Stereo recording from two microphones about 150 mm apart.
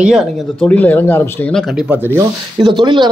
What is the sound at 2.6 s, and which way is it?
Speech, 30° right (ahead or behind).